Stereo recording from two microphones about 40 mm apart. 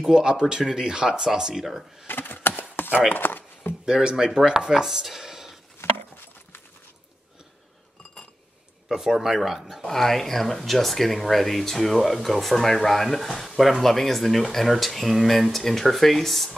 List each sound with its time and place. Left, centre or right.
0.0 s speech: centre
2.0 s a sound: left
3.2 s chopping: left
3.8 s speech: centre
4.5 s chopping: centre
5.8 s a sound: left
8.8 s speech: centre
9.8 s speech: centre